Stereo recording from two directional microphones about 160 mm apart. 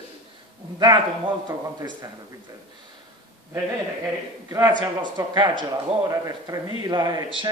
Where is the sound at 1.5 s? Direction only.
20° right (ahead or behind).